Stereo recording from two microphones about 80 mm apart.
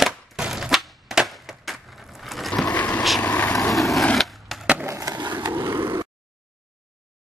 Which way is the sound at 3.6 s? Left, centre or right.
Centre.